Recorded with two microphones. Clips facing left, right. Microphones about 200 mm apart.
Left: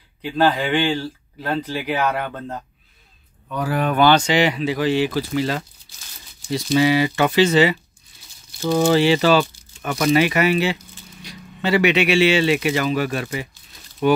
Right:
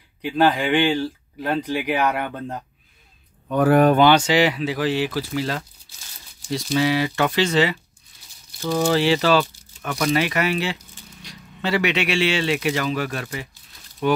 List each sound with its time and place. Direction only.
0.2 s speech: 15° right (ahead or behind)
3.5 s speech: 55° right (ahead or behind)
4.0 s speech: 10° right (ahead or behind)
6.7 s speech: 5° left (ahead or behind)
8.5 s speech: 15° left (ahead or behind)
8.8 s speech: centre (ahead or behind)